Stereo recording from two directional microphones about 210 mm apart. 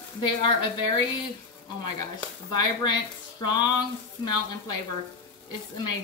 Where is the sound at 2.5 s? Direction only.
20° left (ahead or behind).